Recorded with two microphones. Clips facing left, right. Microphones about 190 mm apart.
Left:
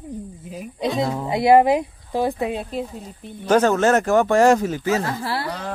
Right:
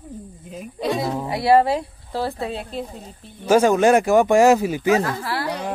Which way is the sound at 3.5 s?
10° right (ahead or behind).